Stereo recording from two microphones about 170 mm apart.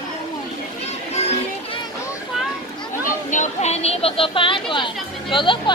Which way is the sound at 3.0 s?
45° left (ahead or behind).